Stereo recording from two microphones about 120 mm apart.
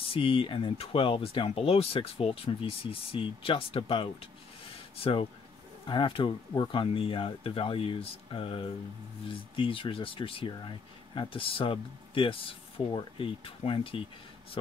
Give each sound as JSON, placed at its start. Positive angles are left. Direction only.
{"t": 0.0, "sound": "speech", "side_deg": 50}